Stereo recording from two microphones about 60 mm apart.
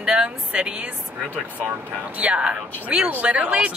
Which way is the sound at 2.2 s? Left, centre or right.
Right.